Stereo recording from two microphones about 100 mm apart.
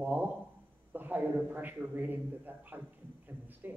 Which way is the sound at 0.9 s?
20° right (ahead or behind).